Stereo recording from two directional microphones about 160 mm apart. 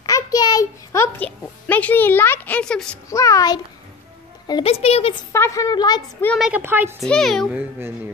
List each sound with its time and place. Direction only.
0.0 s a child's voice: 25° left (ahead or behind); by 3.0 s 5° left (ahead or behind)
3.1 s a woman's voice: 20° left (ahead or behind)
4.6 s speech: 40° left (ahead or behind)
5.3 s a woman's voice: 20° left (ahead or behind)
6.2 s a child's voice: centre (ahead or behind)
6.5 s speech: 10° right (ahead or behind)
7.0 s a child's voice: centre (ahead or behind)